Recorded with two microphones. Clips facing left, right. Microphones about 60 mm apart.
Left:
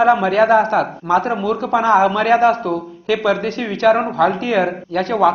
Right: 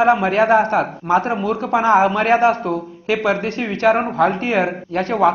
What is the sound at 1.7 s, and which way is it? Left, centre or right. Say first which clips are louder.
Speech: even; centre.